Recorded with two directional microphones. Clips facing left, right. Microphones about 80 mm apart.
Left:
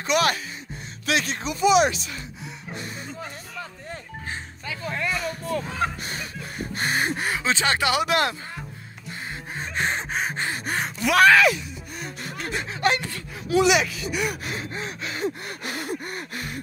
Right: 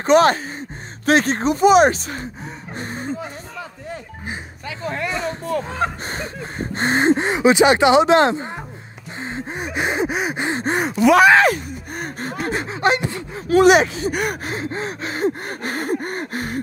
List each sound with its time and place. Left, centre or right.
0.0 s speech: right
4.8 s speech: right
9.2 s gasp: right
10.4 s speech: right
11.3 s gasp: right
12.6 s gasp: right
13.5 s speech: right